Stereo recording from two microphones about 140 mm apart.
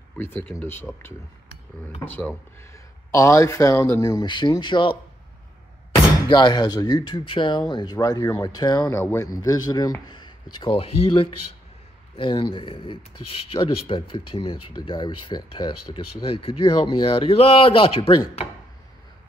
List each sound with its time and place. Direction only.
0.2 s speech: 15° left (ahead or behind); by 4.9 s 35° left (ahead or behind)
6.2 s speech: 30° left (ahead or behind)